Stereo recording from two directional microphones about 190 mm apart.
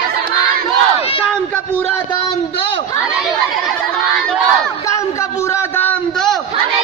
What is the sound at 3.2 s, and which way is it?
Speech, centre (ahead or behind).